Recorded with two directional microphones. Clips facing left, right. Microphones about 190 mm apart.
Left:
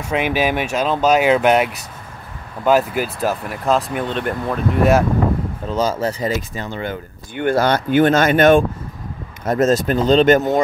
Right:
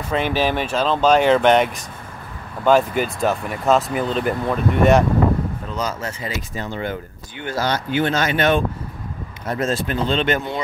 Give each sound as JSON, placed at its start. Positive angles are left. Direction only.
{"t": 0.1, "sound": "speech", "side_deg": 10}
{"t": 5.8, "sound": "speech", "side_deg": 30}
{"t": 7.3, "sound": "speech", "side_deg": 55}